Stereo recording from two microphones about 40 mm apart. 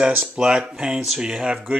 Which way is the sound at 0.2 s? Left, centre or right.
Centre.